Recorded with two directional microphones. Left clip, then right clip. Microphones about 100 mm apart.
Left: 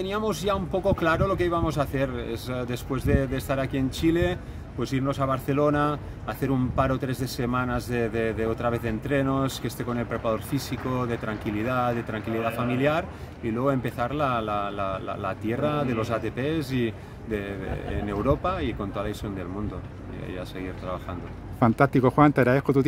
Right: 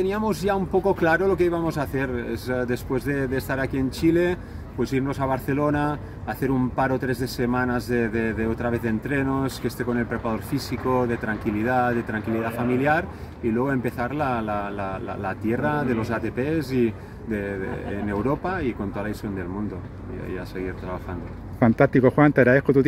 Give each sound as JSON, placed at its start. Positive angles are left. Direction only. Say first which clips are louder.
{"t": 0.0, "sound": "speech", "louder": "right 3 dB", "side_deg": 15}
{"t": 18.4, "sound": "speech", "louder": "right 1 dB", "side_deg": 20}
{"t": 21.5, "sound": "speech", "louder": "right 3 dB", "side_deg": 5}